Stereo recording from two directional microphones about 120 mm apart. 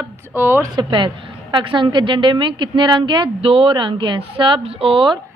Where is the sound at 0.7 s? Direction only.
40° right (ahead or behind).